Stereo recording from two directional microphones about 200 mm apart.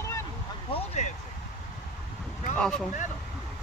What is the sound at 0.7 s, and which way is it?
Speech, 35° left (ahead or behind).